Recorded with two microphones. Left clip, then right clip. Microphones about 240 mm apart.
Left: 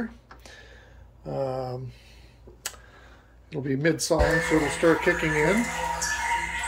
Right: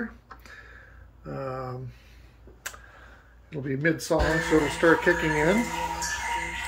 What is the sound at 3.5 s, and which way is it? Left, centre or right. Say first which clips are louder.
Speech: left 1 dB; centre.